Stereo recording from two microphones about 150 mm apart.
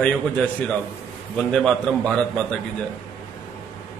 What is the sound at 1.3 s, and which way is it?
A man's voice, 5° left (ahead or behind).